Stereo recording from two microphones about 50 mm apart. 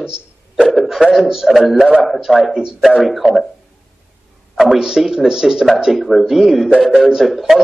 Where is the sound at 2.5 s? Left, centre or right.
Centre.